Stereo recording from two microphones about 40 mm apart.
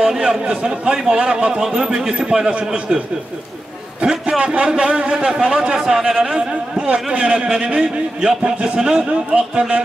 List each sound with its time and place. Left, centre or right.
0.5 s a man's voice: right
1.6 s a man's voice: centre
5.8 s speech: centre
6.9 s a man's voice: right